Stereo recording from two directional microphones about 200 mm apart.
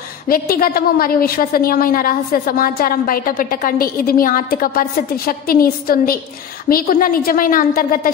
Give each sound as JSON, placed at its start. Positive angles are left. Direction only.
{"t": 0.3, "sound": "a woman's voice", "side_deg": 45}